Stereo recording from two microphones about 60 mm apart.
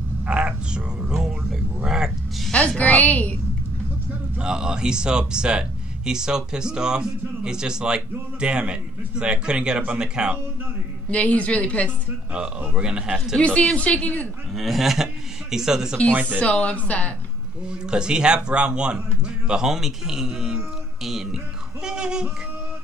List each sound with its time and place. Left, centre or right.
0.3 s a sound: centre
1.9 s music: centre
2.8 s a woman's voice: left
4.4 s speech: centre
11.1 s a woman's voice: left
12.3 s speech: centre
13.4 s a woman's voice: centre
14.5 s speech: centre
16.1 s speech: right
16.3 s a woman's voice: left
17.6 s a man's voice: centre
21.8 s a sound: centre